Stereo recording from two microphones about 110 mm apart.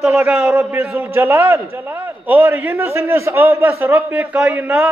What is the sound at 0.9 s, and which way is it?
A man's voice, 25° right (ahead or behind).